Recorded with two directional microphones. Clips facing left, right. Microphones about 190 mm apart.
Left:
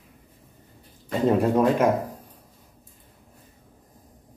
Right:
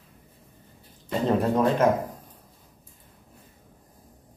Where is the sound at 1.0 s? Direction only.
10° left (ahead or behind).